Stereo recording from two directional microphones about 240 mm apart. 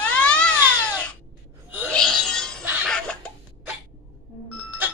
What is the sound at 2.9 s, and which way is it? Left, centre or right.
Cough, centre.